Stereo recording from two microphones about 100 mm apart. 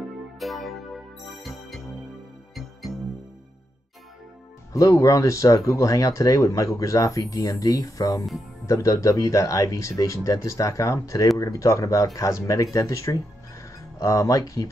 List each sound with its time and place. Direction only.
0.4 s music: centre (ahead or behind)
2.9 s music: centre (ahead or behind)
4.7 s speech: 30° left (ahead or behind)